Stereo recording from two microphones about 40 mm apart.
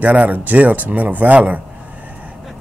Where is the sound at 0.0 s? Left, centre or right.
Right.